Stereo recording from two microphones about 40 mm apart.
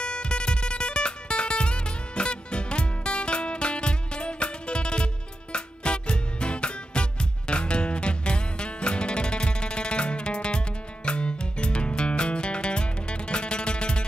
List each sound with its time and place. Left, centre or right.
0.0 s music: left